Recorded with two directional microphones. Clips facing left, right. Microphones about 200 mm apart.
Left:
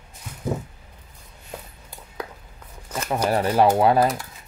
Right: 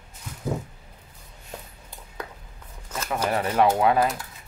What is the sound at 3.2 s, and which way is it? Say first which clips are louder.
Speech: left 3 dB; 35° left (ahead or behind).